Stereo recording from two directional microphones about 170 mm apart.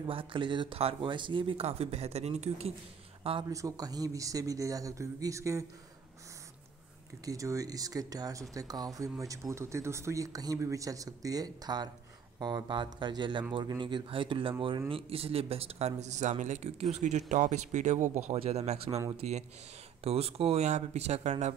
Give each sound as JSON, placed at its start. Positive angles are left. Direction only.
{"t": 0.0, "sound": "speech", "side_deg": -30}
{"t": 3.4, "sound": "speech", "side_deg": -20}
{"t": 7.2, "sound": "a man's voice", "side_deg": -20}